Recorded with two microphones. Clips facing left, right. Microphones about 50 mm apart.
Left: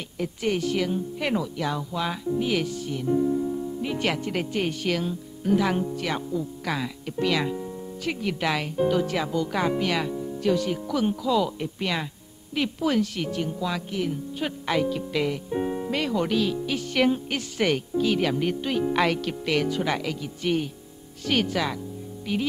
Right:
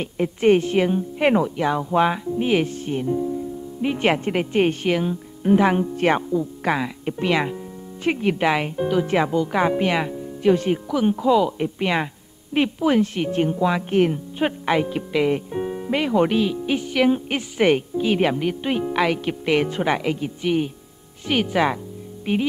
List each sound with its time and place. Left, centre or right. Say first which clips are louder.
0.0 s a woman's voice: right 9 dB; right
5.9 s a woman's voice: right 8 dB; right
10.9 s a woman's voice: right 6 dB; centre
15.5 s music: even; centre
15.9 s speech: right 8 dB; right
18.9 s speech: right 3 dB; centre
19.2 s speech: right 4 dB; right
22.3 s a woman's voice: right 6 dB; right